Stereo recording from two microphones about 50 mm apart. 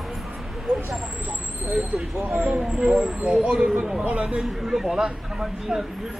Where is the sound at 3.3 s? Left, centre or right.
Centre.